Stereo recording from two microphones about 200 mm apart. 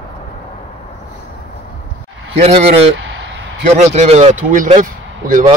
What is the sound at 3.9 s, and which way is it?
Speech, 35° right (ahead or behind).